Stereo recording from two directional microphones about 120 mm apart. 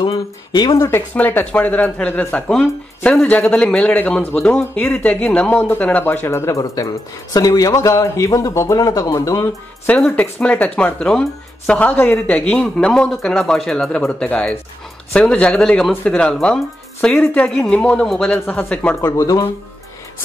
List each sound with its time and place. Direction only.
0.0 s speech: 40° left (ahead or behind)
0.7 s speech: 20° left (ahead or behind)
9.8 s speech: 10° left (ahead or behind)
18.9 s speech: 25° left (ahead or behind)